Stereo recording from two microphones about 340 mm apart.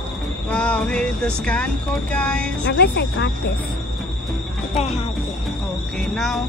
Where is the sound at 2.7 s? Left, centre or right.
Left.